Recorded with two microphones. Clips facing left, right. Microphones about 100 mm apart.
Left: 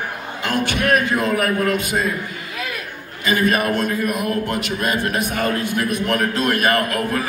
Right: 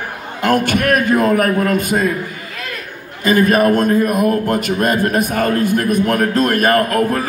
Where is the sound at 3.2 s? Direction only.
45° right (ahead or behind).